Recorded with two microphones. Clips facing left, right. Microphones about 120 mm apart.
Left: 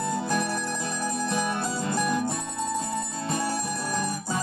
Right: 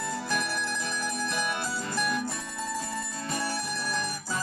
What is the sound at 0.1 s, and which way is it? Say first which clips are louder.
Music: left 4 dB; 25° left (ahead or behind).